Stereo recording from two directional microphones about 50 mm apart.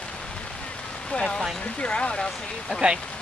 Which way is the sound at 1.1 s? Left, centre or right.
Centre.